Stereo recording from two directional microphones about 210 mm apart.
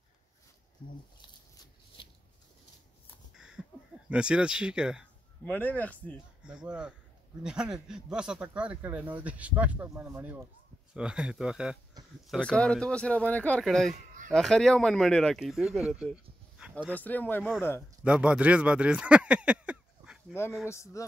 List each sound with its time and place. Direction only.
2.0 s a sound: 25° left (ahead or behind)
3.3 s a sound: 5° right (ahead or behind)
4.1 s speech: 5° right (ahead or behind)
5.4 s speech: 10° left (ahead or behind)
6.4 s speech: 5° right (ahead or behind)
13.9 s a sound: 35° right (ahead or behind)
14.3 s speech: centre (ahead or behind)
16.7 s speech: 5° left (ahead or behind)
18.0 s speech: 5° right (ahead or behind)
20.6 s speech: 15° left (ahead or behind)